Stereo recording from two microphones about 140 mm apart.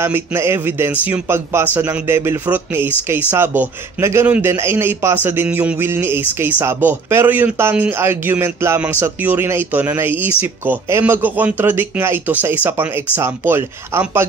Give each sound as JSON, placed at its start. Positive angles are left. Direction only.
{"t": 0.0, "sound": "a man's voice", "side_deg": -15}